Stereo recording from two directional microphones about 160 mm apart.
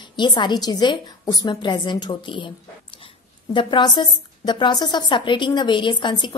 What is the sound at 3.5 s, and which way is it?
A woman's voice, 30° left (ahead or behind).